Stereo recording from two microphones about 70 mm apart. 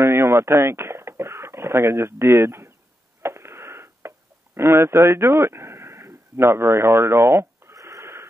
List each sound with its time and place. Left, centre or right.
0.0 s a sound: right
3.2 s wheeze: right
4.6 s speech: right
7.7 s wheeze: right